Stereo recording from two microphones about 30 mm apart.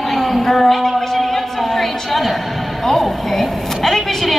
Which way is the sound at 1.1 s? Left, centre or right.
Centre.